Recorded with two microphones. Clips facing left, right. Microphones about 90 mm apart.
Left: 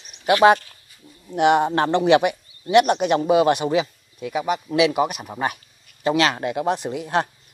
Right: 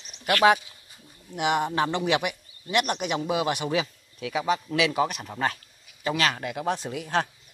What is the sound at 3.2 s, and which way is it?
Speech, 35° left (ahead or behind).